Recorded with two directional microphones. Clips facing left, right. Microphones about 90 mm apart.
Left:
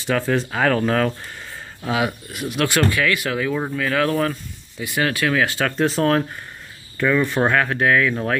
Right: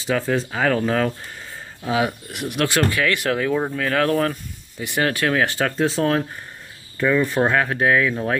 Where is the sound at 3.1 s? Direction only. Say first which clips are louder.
Right 1 dB; 50° right (ahead or behind).